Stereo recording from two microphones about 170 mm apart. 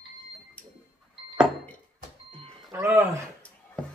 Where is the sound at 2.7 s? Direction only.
15° right (ahead or behind).